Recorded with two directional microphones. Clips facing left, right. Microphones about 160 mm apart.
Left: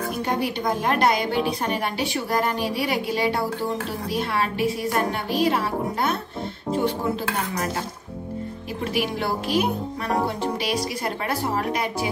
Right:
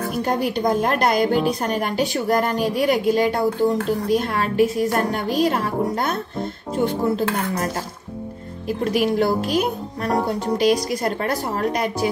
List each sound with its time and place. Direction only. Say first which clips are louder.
0.4 s a woman's voice: right 5 dB; 45° right (ahead or behind)
2.6 s a woman's voice: right 6 dB; 45° right (ahead or behind)
8.9 s speech: right 6 dB; 40° right (ahead or behind)
10.6 s a woman's voice: right 7 dB; 45° right (ahead or behind)